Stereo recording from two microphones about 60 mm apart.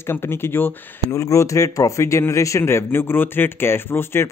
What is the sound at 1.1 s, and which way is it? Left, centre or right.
A man's voice, left.